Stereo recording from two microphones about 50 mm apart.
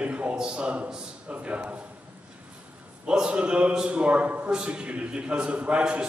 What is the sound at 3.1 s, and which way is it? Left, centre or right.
A man's voice, centre.